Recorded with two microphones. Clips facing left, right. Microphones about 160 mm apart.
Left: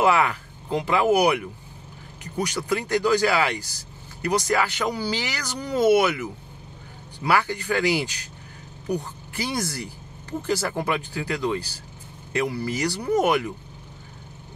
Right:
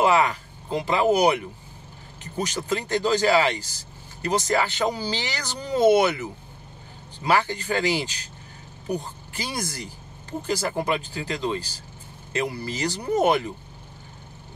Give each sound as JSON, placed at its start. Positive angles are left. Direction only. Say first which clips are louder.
{"t": 0.0, "sound": "speech", "louder": "even", "side_deg": -20}
{"t": 7.2, "sound": "speech", "louder": "even", "side_deg": -20}
{"t": 8.8, "sound": "speech", "louder": "left 1 dB", "side_deg": -20}